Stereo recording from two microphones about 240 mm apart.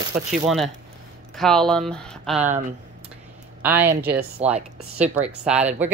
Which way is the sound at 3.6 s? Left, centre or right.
Centre.